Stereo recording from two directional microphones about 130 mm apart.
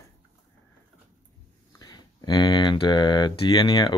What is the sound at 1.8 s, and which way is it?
Speech, 30° left (ahead or behind).